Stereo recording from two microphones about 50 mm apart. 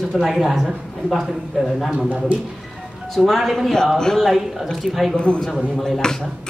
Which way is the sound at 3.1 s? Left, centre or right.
Centre.